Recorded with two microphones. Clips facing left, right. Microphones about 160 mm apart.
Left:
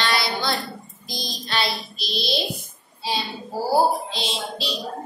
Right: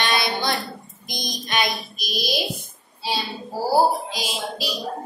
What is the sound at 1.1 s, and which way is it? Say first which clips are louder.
A woman's voice: right 1 dB; 15° right (ahead or behind).